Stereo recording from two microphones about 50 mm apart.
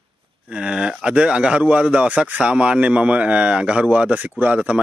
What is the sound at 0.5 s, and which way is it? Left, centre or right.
Speech, right.